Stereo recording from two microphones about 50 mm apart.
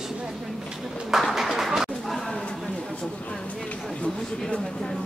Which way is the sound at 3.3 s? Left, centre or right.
Left.